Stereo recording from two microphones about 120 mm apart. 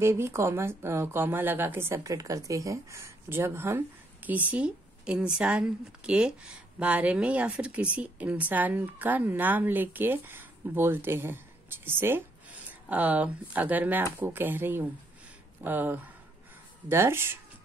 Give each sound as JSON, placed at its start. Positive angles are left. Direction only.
{"t": 0.0, "sound": "a woman's voice", "side_deg": -20}